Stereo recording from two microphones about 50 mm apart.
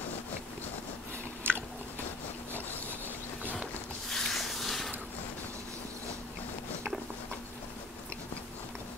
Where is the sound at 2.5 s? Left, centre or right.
Right.